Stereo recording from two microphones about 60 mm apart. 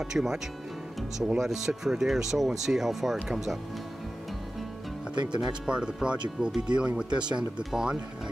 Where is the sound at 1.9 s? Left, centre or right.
Centre.